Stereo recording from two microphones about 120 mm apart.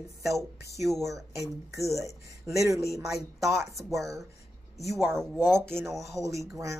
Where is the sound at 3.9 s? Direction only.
25° right (ahead or behind).